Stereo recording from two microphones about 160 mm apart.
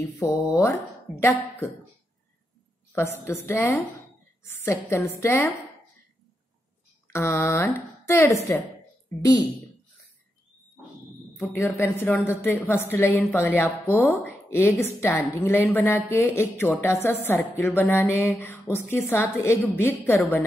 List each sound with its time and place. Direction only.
0.0 s speech: 20° left (ahead or behind)
2.9 s a woman's voice: 15° left (ahead or behind)
7.1 s a woman's voice: 15° left (ahead or behind)
11.4 s a woman's voice: 15° left (ahead or behind)